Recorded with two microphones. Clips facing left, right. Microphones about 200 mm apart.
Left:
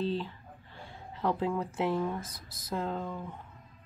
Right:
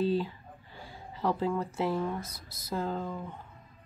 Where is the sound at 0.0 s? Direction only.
10° right (ahead or behind).